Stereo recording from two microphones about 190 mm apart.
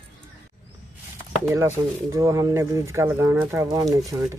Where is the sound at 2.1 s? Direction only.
15° right (ahead or behind).